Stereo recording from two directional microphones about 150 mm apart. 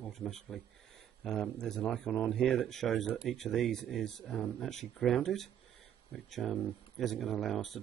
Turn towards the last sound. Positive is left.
turn(degrees=0)  # may be behind; listen again after turning